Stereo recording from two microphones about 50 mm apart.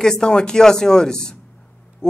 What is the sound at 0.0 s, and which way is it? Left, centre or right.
Speech, centre.